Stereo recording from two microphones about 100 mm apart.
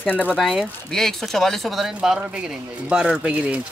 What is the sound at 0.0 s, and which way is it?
Speech, 15° left (ahead or behind).